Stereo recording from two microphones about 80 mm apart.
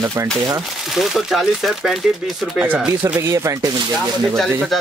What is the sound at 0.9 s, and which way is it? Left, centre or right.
Speech, centre.